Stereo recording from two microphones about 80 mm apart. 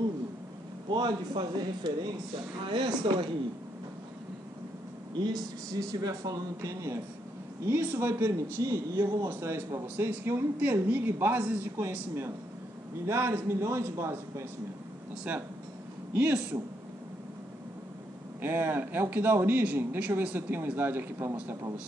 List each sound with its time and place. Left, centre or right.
0.8 s speech: right
2.6 s speech: right
5.1 s speech: right
5.7 s speech: right
7.6 s speech: right
9.3 s speech: right
13.0 s speech: right
16.1 s speech: centre
18.4 s speech: right